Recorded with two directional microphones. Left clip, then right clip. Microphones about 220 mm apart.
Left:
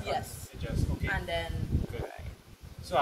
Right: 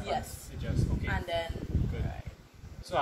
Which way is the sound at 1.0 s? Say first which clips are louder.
Left 1 dB; 15° right (ahead or behind).